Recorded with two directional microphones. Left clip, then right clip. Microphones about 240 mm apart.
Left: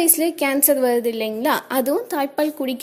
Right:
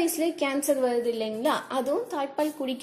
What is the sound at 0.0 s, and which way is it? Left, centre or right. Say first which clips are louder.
A woman's voice: left 6 dB; left.